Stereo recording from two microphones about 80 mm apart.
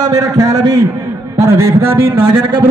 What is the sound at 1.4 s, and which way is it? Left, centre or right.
Speech, right.